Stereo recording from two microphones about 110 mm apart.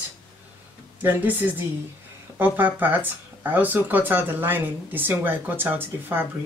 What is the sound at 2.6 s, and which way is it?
Speech, 15° right (ahead or behind).